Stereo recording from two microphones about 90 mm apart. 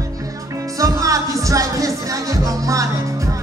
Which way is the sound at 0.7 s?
40° right (ahead or behind).